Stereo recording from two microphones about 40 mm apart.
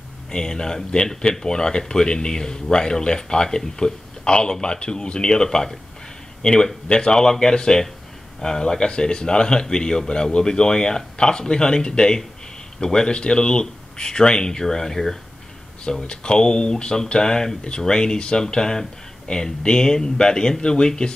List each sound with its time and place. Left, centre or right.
0.3 s speech: centre
16.1 s speech: left